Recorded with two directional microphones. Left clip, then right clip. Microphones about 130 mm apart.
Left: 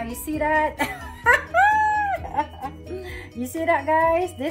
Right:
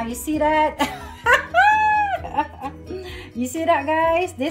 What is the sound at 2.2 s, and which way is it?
Speech, 25° left (ahead or behind).